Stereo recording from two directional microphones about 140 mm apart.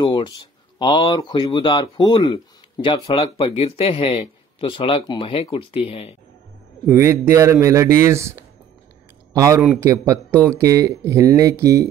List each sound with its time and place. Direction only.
0.0 s speech: 35° left (ahead or behind)
6.9 s speech: 20° right (ahead or behind)
9.6 s a man's voice: 10° right (ahead or behind)
9.8 s speech: 20° right (ahead or behind)